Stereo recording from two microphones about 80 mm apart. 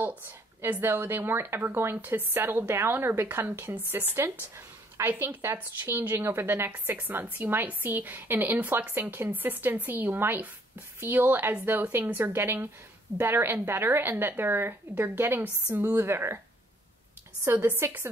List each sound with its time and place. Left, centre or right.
0.0 s a woman's voice: right
17.5 s a woman's voice: right